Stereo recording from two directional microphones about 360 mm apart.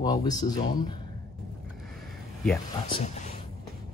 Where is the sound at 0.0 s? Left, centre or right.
Centre.